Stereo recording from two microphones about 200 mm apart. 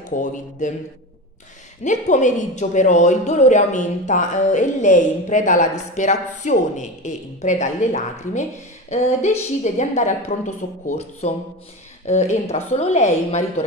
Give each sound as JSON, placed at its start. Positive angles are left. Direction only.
{"t": 0.1, "sound": "a woman's voice", "side_deg": 40}
{"t": 1.9, "sound": "a woman's voice", "side_deg": 35}